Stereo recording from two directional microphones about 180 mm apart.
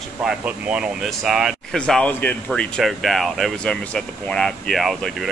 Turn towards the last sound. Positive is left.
turn(degrees=0)  # may be behind; listen again after turning